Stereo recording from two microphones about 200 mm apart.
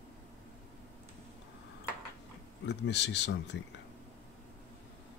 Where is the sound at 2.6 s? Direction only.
60° left (ahead or behind).